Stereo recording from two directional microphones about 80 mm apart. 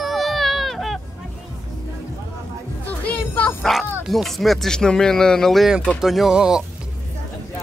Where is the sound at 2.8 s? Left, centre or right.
Centre.